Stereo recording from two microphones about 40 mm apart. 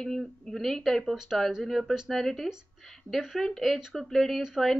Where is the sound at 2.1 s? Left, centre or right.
Centre.